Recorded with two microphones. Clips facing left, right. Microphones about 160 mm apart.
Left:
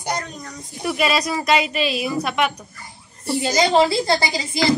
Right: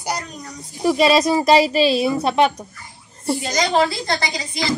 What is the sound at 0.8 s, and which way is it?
A woman's voice, 30° right (ahead or behind).